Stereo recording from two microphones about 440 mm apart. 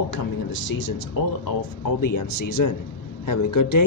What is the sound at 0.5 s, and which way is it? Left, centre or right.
A woman's voice, left.